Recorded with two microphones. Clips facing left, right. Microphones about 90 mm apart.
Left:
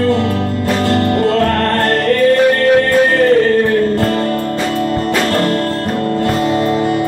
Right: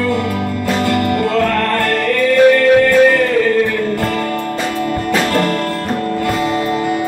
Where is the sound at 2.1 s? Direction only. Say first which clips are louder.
Right 1 dB; 45° left (ahead or behind).